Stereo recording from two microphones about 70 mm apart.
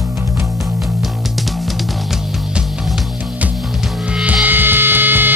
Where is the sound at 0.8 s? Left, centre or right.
Centre.